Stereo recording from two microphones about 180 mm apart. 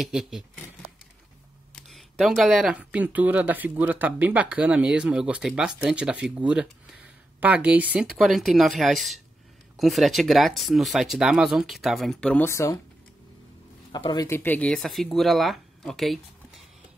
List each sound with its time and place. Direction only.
0.0 s speech: centre (ahead or behind)
1.8 s speech: centre (ahead or behind)
12.4 s speech: 15° left (ahead or behind)
13.9 s speech: 20° left (ahead or behind); by 16.6 s centre (ahead or behind)